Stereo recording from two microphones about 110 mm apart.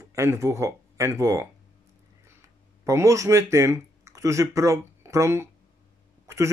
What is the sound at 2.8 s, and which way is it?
Speech, 30° right (ahead or behind).